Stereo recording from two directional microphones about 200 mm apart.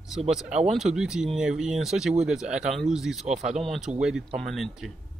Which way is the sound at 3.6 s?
Centre (ahead or behind).